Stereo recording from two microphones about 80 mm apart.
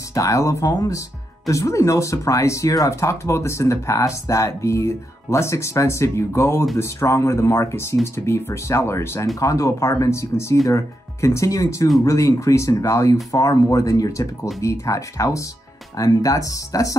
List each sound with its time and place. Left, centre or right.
0.1 s speech: left